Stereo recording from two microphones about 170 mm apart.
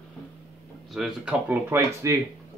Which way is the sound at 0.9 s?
5° right (ahead or behind).